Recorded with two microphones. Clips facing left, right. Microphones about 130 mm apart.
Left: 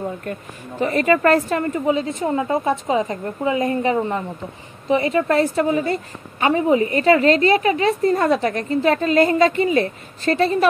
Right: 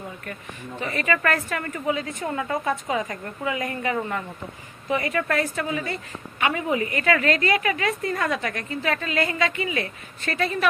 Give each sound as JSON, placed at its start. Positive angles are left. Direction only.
{"t": 0.2, "sound": "a woman's voice", "side_deg": 35}